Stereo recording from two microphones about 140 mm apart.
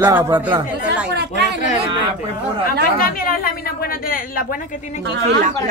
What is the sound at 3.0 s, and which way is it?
A woman's voice, 90° left.